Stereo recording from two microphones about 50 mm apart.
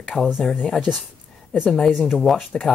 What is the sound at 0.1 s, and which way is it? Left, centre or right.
Speech, centre.